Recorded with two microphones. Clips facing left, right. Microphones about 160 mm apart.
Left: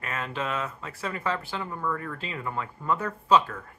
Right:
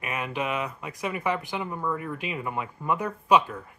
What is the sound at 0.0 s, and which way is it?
Speech, 15° right (ahead or behind).